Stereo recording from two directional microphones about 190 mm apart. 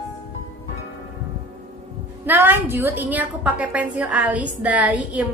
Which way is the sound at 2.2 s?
10° right (ahead or behind).